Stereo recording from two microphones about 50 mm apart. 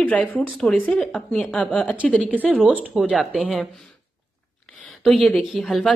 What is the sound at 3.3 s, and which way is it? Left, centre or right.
Speech, centre.